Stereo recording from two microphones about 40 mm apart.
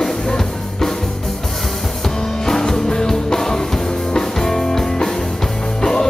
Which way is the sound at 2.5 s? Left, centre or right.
Centre.